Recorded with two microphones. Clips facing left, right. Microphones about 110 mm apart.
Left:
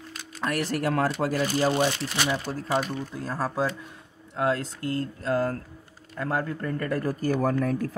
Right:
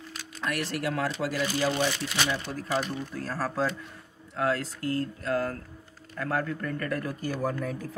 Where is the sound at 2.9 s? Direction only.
20° left (ahead or behind); by 7.7 s 55° left (ahead or behind).